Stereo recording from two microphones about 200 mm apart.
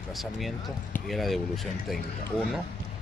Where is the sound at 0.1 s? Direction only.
Centre (ahead or behind).